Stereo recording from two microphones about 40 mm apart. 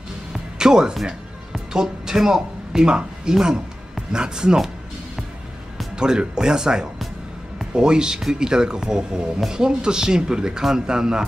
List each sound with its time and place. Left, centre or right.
0.3 s music: centre
1.7 s speech: centre
5.9 s speech: centre